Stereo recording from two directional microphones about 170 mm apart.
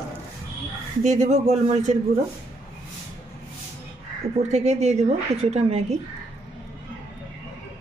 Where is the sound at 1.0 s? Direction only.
45° right (ahead or behind).